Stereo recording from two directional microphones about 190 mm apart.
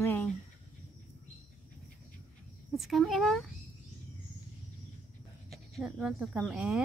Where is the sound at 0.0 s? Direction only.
10° left (ahead or behind).